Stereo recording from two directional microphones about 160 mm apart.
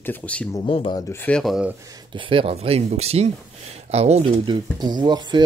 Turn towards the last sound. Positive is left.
turn(degrees=-25)  # may be behind; listen again after turning